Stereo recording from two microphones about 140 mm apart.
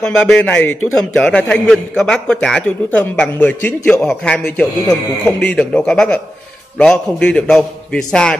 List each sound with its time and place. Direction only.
0.0 s a man's voice: 5° left (ahead or behind)